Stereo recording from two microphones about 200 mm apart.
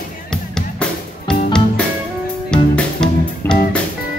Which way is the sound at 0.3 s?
5° left (ahead or behind).